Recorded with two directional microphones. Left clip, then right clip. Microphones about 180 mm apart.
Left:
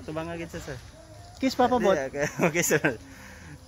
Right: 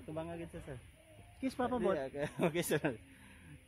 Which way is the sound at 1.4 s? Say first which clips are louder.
Left 13 dB; 5° left (ahead or behind).